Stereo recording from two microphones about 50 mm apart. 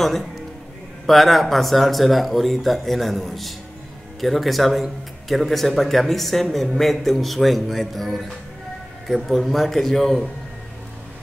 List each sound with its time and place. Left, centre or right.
0.0 s a man's voice: centre